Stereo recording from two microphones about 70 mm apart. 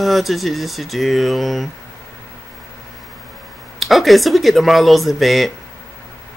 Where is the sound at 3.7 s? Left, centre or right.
Centre.